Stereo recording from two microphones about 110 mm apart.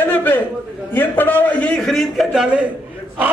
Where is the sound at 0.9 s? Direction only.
20° left (ahead or behind); by 2.4 s centre (ahead or behind).